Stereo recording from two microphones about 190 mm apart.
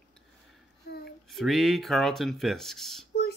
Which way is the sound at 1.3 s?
Centre (ahead or behind).